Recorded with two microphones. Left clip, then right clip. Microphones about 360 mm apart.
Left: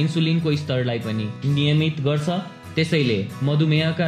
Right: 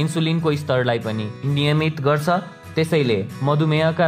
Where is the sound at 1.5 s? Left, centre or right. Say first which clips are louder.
Right 2 dB; right.